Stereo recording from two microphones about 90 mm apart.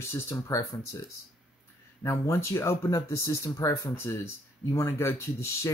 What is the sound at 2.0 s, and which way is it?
Speech, 35° left (ahead or behind).